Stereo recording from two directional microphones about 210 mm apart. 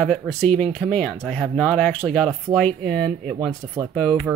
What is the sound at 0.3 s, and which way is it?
Speech, 5° left (ahead or behind).